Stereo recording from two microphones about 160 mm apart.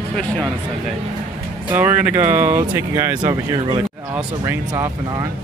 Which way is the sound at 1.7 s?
10° right (ahead or behind).